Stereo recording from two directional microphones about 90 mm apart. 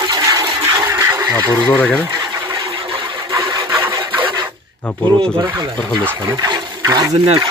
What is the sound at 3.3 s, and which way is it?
Vehicle, 35° right (ahead or behind).